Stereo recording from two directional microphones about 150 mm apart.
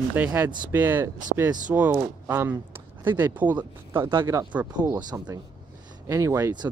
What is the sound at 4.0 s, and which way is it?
Speech, 30° right (ahead or behind).